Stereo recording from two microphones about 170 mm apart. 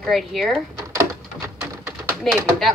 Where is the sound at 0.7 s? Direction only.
15° right (ahead or behind).